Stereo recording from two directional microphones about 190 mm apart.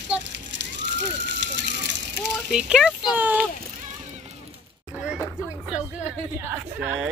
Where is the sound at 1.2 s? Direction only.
65° right (ahead or behind).